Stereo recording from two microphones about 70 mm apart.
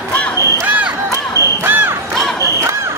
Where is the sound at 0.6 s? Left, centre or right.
Centre.